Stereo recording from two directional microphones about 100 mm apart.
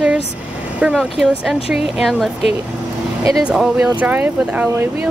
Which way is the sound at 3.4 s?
5° right (ahead or behind).